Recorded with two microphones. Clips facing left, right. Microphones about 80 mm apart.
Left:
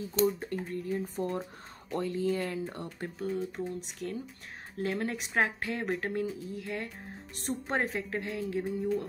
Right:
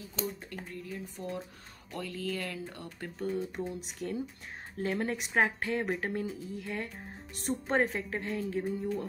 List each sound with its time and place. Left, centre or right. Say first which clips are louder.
0.4 s speech: left 7 dB; left
3.2 s speech: even; centre